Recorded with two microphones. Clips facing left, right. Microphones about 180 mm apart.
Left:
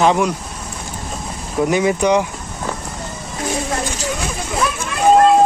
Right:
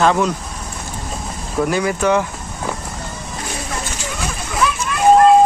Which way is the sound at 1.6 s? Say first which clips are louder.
Left 2 dB; 20° left (ahead or behind).